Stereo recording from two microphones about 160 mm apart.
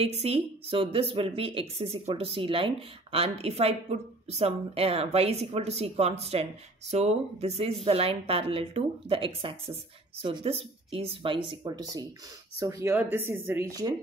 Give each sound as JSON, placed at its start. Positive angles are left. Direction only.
{"t": 0.0, "sound": "speech", "side_deg": -40}